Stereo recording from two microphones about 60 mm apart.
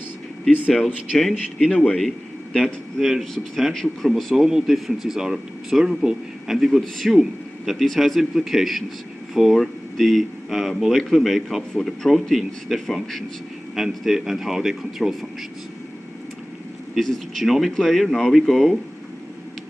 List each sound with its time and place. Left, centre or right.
1.3 s speech: centre
1.9 s speech: centre
4.5 s a man's voice: centre
13.7 s speech: centre
17.0 s speech: centre